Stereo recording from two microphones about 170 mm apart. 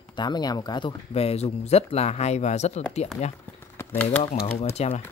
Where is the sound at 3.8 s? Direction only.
10° left (ahead or behind).